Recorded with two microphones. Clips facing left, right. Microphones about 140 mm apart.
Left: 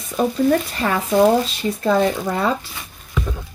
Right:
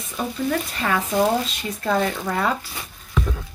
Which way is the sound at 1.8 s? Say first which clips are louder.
Left 4 dB; 30° left (ahead or behind).